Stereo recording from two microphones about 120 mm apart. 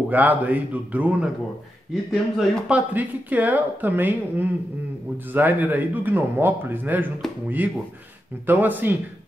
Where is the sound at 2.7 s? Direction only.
15° right (ahead or behind).